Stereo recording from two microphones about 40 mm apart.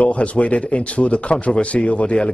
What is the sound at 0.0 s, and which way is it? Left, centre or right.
A man's voice, left.